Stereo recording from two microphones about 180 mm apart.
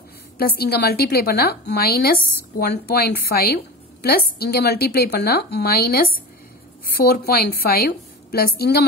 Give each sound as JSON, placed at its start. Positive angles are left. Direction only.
{"t": 0.4, "sound": "a woman's voice", "side_deg": 55}